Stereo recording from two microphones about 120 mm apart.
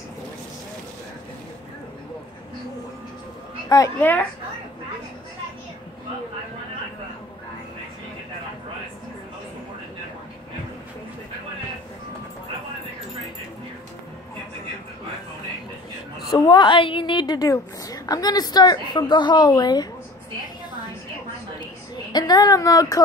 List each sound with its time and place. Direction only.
3.6 s a woman's voice: 30° left (ahead or behind)
4.0 s a woman's voice: 15° left (ahead or behind)
16.3 s a woman's voice: 35° left (ahead or behind)
22.1 s speech: 35° left (ahead or behind)